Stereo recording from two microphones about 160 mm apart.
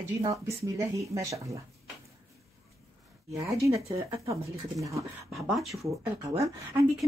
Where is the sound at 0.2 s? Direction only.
20° right (ahead or behind).